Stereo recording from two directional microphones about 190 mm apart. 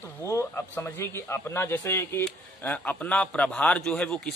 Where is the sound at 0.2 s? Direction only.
15° left (ahead or behind).